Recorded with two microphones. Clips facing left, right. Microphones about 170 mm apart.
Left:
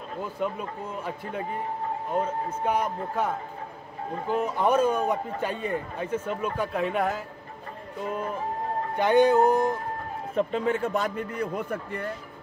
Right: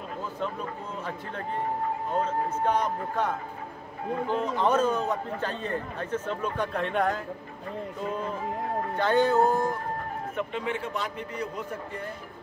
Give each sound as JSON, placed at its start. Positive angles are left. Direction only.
{"t": 0.4, "sound": "a man's voice", "side_deg": 10}
{"t": 8.9, "sound": "a man's voice", "side_deg": 15}
{"t": 10.3, "sound": "a man's voice", "side_deg": 40}